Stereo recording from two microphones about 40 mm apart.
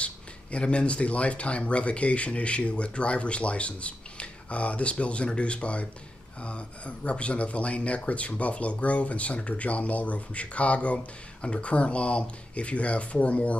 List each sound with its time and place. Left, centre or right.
0.0 s speech: left